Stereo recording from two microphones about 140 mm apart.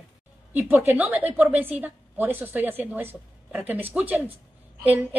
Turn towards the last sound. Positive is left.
turn(degrees=-10)  # may be behind; listen again after turning